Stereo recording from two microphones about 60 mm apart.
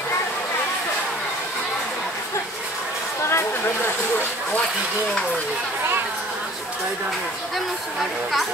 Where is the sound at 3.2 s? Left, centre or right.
Left.